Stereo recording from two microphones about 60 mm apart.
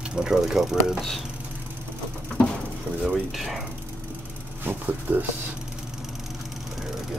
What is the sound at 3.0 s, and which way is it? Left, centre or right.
Speech, centre.